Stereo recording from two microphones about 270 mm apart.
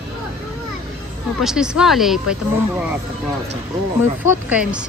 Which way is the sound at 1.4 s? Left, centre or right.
Centre.